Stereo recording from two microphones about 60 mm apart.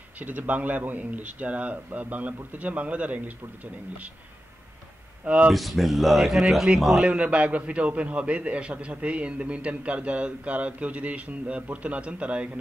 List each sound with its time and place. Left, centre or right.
0.2 s a man's voice: right
5.2 s speech: right
5.5 s a man's voice: centre
7.1 s a man's voice: centre